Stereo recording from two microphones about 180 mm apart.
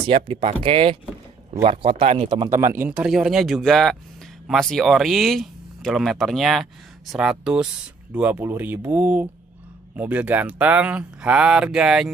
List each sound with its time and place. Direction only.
0.0 s speech: 30° right (ahead or behind)
2.5 s speech: 15° right (ahead or behind)